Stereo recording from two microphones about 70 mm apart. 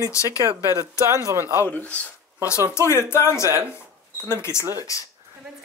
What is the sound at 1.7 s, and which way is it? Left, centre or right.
Speech, left.